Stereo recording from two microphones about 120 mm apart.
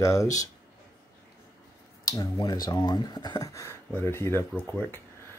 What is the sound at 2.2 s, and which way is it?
Speech, 35° left (ahead or behind).